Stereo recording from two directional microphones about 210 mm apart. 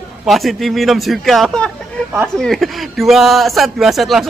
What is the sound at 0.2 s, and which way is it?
A man's voice, centre (ahead or behind).